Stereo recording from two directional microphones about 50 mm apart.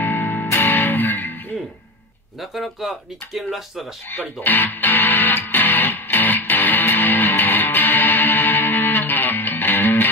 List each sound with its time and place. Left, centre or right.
0.0 s music: left
2.5 s speech: centre
4.1 s music: left